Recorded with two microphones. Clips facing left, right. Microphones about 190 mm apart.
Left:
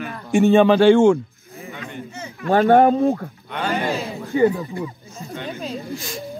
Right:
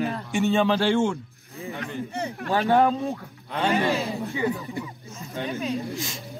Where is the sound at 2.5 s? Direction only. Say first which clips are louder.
Left 7 dB; 55° left (ahead or behind).